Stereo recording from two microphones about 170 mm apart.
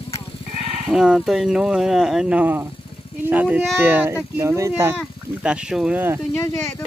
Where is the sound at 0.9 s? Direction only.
Centre (ahead or behind).